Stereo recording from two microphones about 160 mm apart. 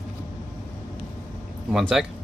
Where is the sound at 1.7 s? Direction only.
5° right (ahead or behind).